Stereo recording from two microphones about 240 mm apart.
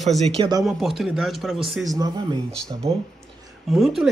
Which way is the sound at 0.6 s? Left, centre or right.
Centre.